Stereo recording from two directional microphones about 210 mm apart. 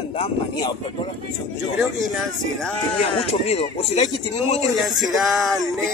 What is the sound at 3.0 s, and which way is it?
Speech, 30° left (ahead or behind).